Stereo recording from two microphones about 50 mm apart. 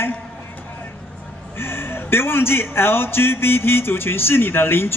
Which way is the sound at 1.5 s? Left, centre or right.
Left.